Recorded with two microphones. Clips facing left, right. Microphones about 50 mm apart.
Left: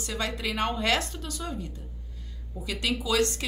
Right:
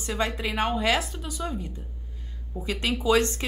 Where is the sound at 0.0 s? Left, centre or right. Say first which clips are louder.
Right 3 dB; right.